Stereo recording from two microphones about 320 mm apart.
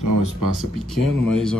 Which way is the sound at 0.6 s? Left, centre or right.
Centre.